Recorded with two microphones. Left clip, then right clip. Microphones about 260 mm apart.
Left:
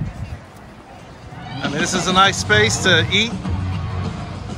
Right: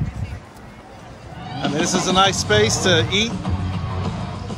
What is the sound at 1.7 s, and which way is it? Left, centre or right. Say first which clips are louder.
Speech: even; centre.